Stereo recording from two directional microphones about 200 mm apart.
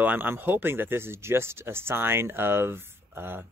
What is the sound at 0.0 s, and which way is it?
Speech, 10° right (ahead or behind).